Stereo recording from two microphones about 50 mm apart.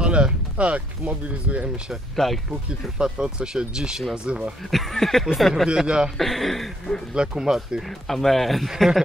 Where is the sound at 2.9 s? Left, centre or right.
Centre.